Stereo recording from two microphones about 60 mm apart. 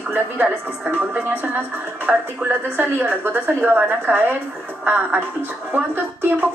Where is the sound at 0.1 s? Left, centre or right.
Right.